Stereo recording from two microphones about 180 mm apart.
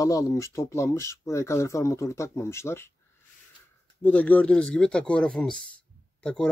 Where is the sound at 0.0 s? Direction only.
20° left (ahead or behind).